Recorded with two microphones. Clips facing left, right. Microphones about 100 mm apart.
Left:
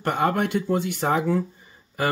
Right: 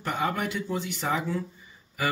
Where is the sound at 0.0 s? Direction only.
55° left (ahead or behind).